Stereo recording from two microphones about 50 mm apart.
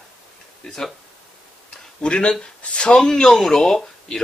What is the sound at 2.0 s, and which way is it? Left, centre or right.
Speech, centre.